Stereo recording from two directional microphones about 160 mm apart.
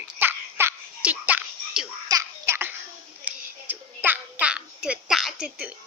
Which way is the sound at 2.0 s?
20° right (ahead or behind).